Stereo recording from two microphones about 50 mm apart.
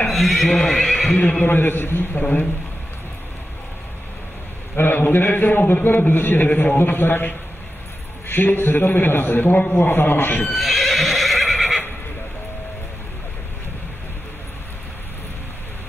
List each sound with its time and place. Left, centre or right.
0.1 s speech: centre
0.5 s speech: centre
1.0 s speech: left
1.4 s a man's voice: left
4.7 s a man's voice: left
6.8 s a man's voice: left
10.5 s horse: centre